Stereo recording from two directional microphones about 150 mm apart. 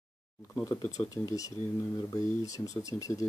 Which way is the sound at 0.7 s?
20° left (ahead or behind).